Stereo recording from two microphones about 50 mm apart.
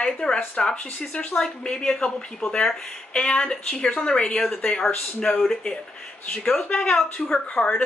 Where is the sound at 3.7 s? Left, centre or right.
Centre.